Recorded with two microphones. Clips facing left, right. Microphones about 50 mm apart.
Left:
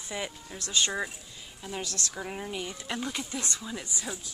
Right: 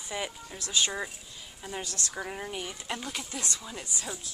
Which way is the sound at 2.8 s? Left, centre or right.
Centre.